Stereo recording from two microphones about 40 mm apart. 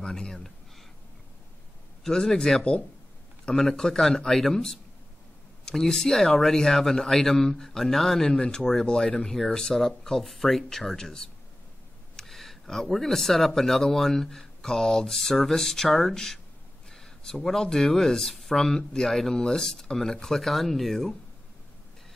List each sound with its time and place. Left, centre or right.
0.0 s speech: centre
2.0 s speech: centre
3.5 s speech: centre
16.9 s a sound: centre
17.7 s speech: centre